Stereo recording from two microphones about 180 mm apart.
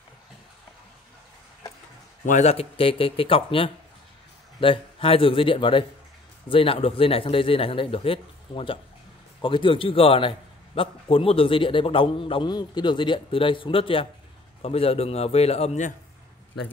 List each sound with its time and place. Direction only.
2.2 s a man's voice: 40° left (ahead or behind)